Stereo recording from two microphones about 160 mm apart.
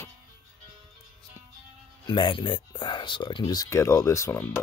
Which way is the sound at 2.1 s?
30° left (ahead or behind).